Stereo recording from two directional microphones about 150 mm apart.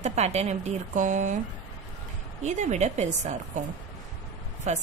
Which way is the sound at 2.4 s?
50° right (ahead or behind).